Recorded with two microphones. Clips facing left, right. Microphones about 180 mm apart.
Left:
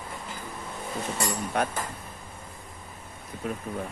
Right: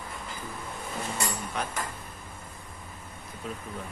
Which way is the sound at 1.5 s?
55° left (ahead or behind).